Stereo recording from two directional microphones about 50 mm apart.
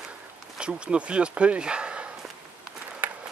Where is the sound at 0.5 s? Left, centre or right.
Centre.